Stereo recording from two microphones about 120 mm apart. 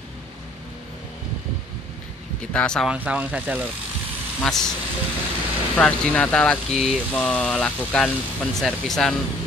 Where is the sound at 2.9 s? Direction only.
10° right (ahead or behind).